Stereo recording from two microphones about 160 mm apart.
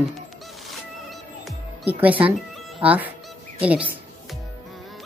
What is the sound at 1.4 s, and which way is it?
Music, 10° right (ahead or behind).